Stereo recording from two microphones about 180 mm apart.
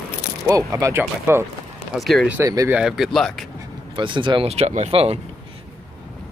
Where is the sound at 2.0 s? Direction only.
Centre (ahead or behind).